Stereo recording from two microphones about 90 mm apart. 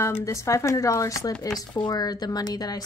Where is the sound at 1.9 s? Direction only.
50° left (ahead or behind).